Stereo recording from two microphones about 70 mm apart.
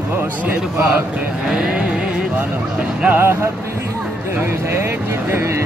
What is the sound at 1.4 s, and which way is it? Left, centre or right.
Music, centre.